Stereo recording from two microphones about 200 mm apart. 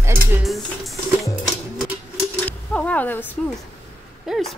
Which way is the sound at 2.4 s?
5° left (ahead or behind).